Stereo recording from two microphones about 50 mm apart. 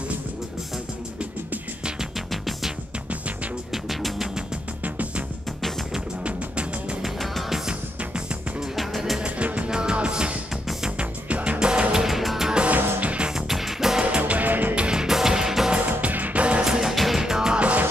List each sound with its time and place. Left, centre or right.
2.3 s music: centre
3.7 s music: centre
4.8 s music: right
6.2 s music: right
7.0 s music: centre
8.7 s music: centre
9.2 s music: right; by 12.4 s centre
12.4 s music: centre
13.3 s music: centre
14.1 s music: right
14.8 s music: centre
15.7 s music: right
16.6 s music: centre
17.6 s music: right